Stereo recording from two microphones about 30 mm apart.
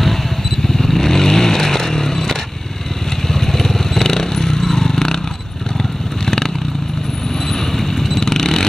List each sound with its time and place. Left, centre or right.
0.7 s vehicle: centre
6.2 s vehicle: centre
7.7 s vehicle: centre